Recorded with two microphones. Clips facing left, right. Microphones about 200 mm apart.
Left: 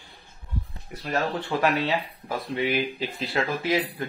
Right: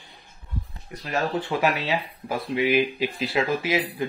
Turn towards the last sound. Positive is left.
turn(degrees=-10)  # may be behind; listen again after turning